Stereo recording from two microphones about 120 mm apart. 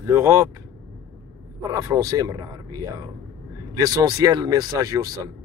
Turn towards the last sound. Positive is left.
turn(degrees=-30)  # may be behind; listen again after turning